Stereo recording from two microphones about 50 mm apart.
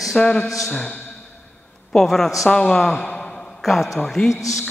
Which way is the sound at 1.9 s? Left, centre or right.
Centre.